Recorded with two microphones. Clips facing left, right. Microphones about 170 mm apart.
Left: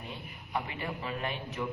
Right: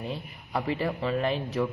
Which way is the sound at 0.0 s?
35° right (ahead or behind).